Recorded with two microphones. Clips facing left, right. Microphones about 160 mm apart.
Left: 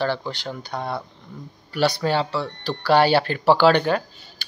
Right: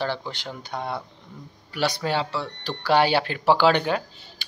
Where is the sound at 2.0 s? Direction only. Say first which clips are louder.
Left 3 dB; 15° right (ahead or behind).